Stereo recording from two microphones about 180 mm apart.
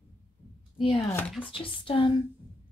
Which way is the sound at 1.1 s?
10° left (ahead or behind).